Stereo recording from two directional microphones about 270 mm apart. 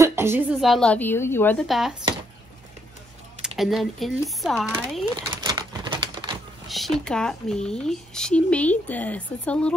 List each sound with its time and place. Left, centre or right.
0.0 s speech: centre
3.4 s speech: centre
5.4 s typewriter: centre
6.7 s speech: centre